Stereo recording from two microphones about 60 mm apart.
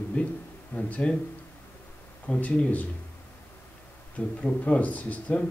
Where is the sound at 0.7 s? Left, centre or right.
Left.